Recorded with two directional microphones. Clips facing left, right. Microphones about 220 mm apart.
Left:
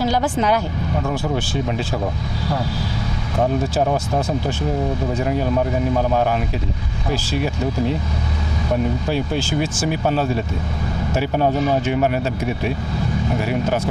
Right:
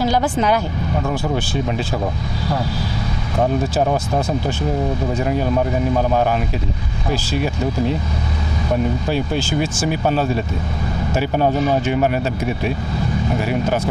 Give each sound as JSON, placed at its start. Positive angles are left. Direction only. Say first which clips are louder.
{"t": 0.1, "sound": "speech", "louder": "right 1 dB", "side_deg": -20}
{"t": 3.3, "sound": "speech", "louder": "right 1 dB", "side_deg": -25}
{"t": 5.2, "sound": "speech", "louder": "right 1 dB", "side_deg": -25}
{"t": 9.8, "sound": "speech", "louder": "right 1 dB", "side_deg": -25}
{"t": 11.3, "sound": "speech", "louder": "right 1 dB", "side_deg": -30}